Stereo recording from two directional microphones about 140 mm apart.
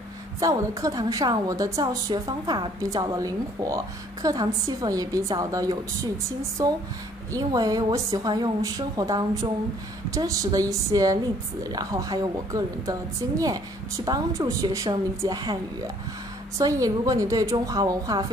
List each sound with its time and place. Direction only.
0.4 s a woman's voice: 25° right (ahead or behind)
16.5 s a woman's voice: 25° right (ahead or behind)